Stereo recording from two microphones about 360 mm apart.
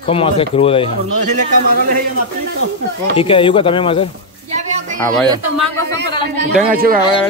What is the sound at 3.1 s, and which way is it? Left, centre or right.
Speech, centre.